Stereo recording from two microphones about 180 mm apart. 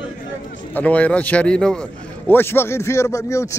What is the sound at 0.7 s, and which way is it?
A man's voice, 10° left (ahead or behind).